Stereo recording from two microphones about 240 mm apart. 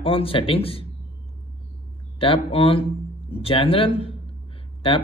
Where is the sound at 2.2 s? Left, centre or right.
Left.